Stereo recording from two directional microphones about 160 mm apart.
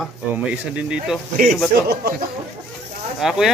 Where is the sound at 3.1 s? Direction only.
Centre (ahead or behind).